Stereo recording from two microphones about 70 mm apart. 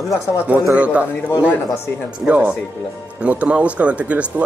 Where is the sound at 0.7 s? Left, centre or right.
Centre.